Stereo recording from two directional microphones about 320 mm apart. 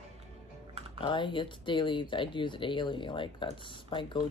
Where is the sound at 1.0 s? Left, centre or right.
Centre.